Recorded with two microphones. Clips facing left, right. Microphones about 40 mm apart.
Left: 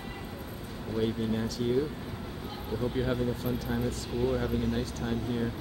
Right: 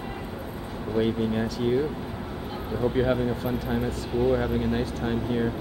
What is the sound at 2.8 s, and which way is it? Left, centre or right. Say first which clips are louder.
Speech: right 6 dB; right.